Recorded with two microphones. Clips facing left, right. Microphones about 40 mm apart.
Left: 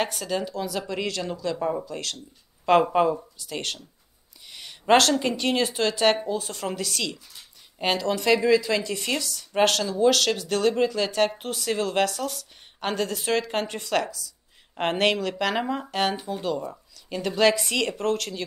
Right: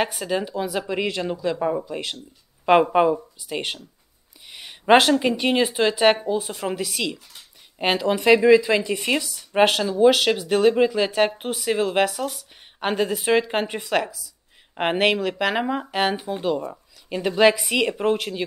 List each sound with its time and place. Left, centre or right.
0.0 s a woman's voice: centre